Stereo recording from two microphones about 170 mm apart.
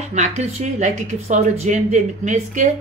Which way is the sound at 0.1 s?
40° right (ahead or behind).